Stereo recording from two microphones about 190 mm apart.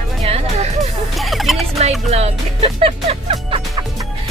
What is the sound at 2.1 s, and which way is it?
Speech, 35° right (ahead or behind).